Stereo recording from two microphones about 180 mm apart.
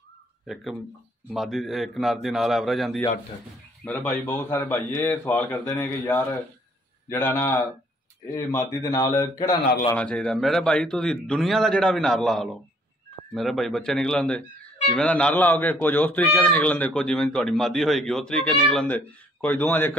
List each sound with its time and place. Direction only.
1.3 s speech: centre (ahead or behind); by 9.2 s 20° left (ahead or behind)
9.9 s speech: 5° left (ahead or behind)